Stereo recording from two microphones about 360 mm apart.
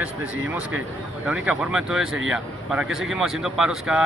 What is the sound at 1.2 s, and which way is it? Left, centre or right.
Speech, centre.